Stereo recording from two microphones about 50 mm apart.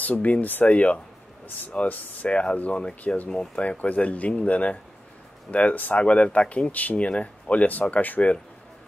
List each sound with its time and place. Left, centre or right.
0.0 s speech: left
0.7 s speech: left